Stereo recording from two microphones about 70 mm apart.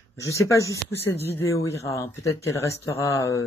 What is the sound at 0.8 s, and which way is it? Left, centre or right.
Speech, left.